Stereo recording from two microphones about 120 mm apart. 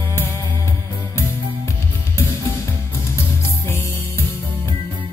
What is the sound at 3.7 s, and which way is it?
Music, 20° left (ahead or behind).